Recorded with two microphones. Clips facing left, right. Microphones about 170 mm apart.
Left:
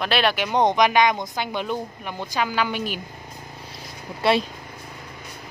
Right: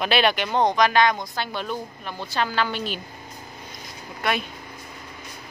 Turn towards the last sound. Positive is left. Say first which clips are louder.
# left 6 dB
turn(degrees=30)  # may be behind; listen again after turning